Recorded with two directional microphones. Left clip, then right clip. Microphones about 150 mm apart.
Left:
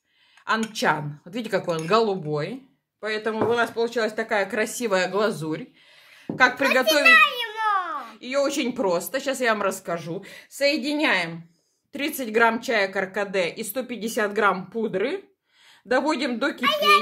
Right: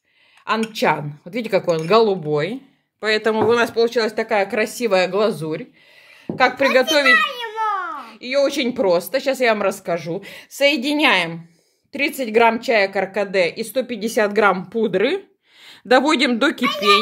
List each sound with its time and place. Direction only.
0.7 s a woman's voice: 25° right (ahead or behind)
2.3 s speech: 45° right (ahead or behind)
3.0 s speech: 65° right (ahead or behind); by 5.7 s 15° right (ahead or behind)
6.3 s speech: 25° right (ahead or behind)
7.1 s babbling: 40° left (ahead or behind)
8.1 s a woman's voice: 30° right (ahead or behind)
10.2 s a woman's voice: 50° right (ahead or behind)
11.9 s a woman's voice: 25° right (ahead or behind); by 16.6 s 60° right (ahead or behind)